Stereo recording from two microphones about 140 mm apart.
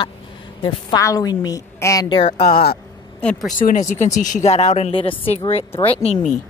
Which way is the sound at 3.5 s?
70° left (ahead or behind).